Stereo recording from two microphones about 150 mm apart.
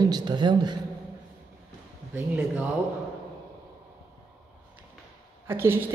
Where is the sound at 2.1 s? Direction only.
10° right (ahead or behind).